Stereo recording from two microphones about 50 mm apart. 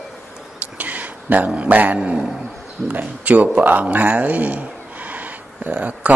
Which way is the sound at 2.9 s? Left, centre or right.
Right.